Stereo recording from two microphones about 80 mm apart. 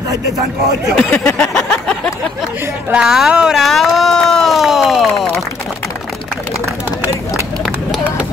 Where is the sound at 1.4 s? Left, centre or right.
Centre.